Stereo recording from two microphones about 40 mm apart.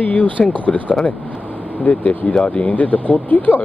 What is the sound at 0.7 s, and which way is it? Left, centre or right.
Speech, centre.